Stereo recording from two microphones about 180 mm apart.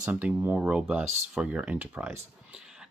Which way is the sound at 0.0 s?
10° right (ahead or behind).